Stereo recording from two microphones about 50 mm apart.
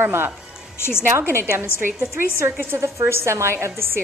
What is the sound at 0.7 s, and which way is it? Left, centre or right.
Speech, left.